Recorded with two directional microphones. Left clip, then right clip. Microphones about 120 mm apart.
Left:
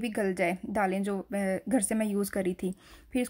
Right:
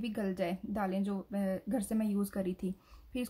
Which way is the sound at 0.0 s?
35° left (ahead or behind).